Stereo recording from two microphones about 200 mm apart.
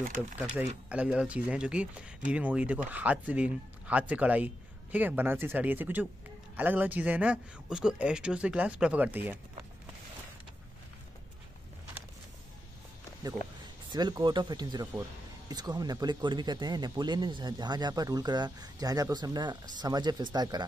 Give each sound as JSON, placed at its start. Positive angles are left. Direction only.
{"t": 0.0, "sound": "speech", "side_deg": -40}
{"t": 0.8, "sound": "speech", "side_deg": -5}
{"t": 13.8, "sound": "speech", "side_deg": -20}